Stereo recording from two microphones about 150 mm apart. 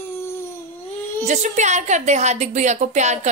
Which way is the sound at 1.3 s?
50° right (ahead or behind).